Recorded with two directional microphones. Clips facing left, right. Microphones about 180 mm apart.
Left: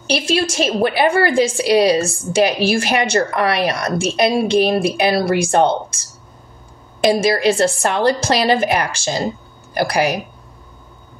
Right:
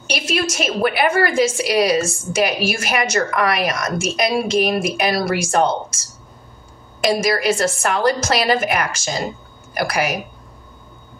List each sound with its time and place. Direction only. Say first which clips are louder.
0.0 s a woman's voice: left 4 dB; 30° left (ahead or behind)